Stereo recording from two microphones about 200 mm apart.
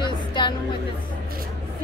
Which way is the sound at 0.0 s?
20° left (ahead or behind).